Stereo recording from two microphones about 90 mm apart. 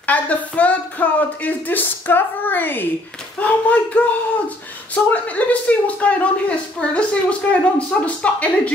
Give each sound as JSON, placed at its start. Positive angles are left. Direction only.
{"t": 0.0, "sound": "speech", "side_deg": 15}